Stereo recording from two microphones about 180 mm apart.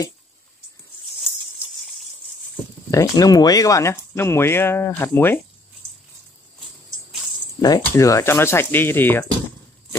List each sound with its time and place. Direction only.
2.9 s speech: 20° left (ahead or behind)
7.6 s speech: 20° left (ahead or behind)